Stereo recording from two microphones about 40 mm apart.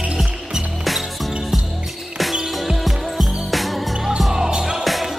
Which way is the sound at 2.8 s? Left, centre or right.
Centre.